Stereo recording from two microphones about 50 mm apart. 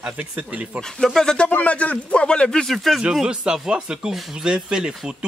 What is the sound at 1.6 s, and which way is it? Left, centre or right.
Speech, left.